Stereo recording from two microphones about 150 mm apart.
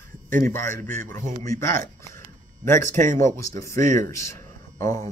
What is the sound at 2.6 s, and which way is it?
Speech, 15° left (ahead or behind).